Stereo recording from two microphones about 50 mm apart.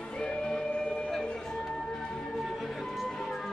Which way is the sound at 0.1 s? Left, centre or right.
Centre.